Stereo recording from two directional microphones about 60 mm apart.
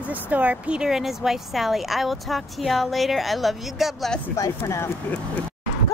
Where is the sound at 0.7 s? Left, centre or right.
Centre.